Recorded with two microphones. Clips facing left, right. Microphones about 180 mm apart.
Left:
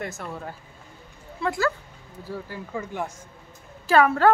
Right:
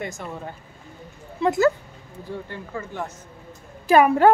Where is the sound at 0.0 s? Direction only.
Centre (ahead or behind).